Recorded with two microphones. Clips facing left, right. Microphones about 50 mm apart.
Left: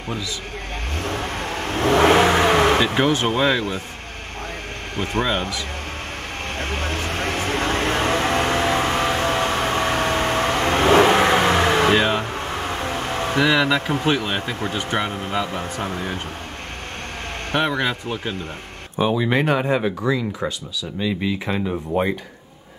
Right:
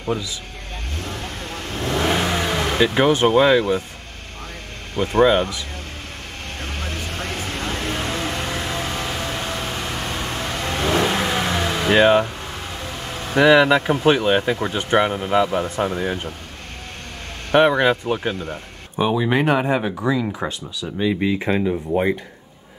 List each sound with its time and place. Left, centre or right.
1.8 s vehicle: left
3.3 s speech: centre
5.1 s speech: centre
7.0 s vehicle: left
11.9 s speech: centre
12.8 s vehicle: left
13.4 s speech: centre
17.5 s speech: centre
18.9 s speech: centre
21.0 s speech: right